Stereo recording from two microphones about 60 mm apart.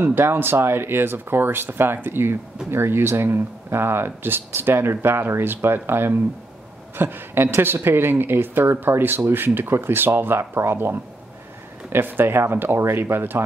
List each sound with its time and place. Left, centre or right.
0.0 s a woman's voice: right